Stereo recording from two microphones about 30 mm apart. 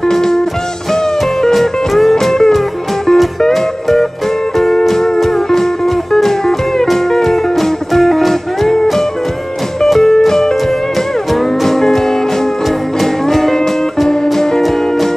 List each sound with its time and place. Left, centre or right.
0.1 s music: centre
1.5 s music: centre
2.1 s music: centre
6.1 s music: centre
9.8 s music: centre
11.6 s music: centre
13.0 s music: centre